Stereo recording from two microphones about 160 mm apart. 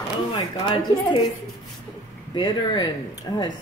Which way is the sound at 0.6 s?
35° left (ahead or behind).